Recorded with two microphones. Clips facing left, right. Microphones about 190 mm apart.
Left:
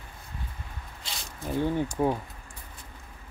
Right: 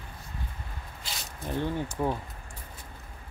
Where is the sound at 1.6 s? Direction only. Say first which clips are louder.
Left 4 dB; 15° left (ahead or behind).